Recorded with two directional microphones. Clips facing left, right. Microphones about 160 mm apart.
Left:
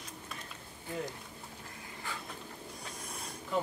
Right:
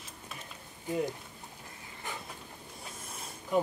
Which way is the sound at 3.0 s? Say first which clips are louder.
Left 1 dB; 5° right (ahead or behind).